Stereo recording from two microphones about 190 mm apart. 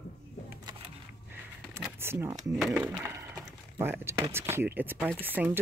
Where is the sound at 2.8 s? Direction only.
Centre (ahead or behind).